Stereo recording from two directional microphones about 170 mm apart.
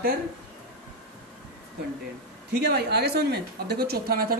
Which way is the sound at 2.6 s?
70° right (ahead or behind).